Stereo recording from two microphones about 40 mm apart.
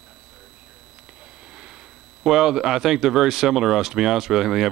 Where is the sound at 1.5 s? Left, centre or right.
Centre.